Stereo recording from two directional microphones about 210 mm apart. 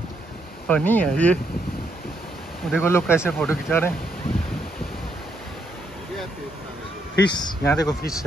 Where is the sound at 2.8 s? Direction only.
10° left (ahead or behind).